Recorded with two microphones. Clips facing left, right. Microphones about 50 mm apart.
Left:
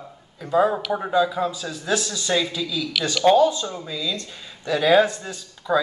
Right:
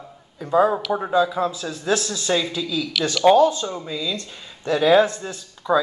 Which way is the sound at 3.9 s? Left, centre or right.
Right.